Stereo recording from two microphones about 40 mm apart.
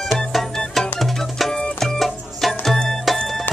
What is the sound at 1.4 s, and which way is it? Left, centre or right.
Music, centre.